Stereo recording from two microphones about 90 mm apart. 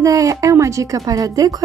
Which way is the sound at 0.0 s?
40° right (ahead or behind).